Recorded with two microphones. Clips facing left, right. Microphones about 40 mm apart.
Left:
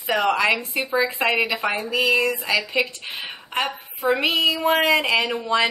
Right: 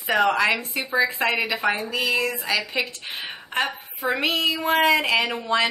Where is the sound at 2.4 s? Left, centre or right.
Centre.